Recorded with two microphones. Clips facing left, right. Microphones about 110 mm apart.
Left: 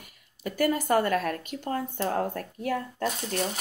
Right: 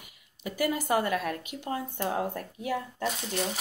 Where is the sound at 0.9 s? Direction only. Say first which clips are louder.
Left 3 dB; 45° left (ahead or behind).